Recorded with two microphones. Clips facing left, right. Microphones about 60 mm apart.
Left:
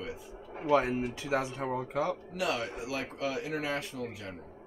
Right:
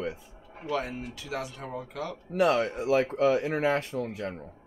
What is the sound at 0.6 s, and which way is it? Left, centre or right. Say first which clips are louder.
Speech: left 5 dB; left.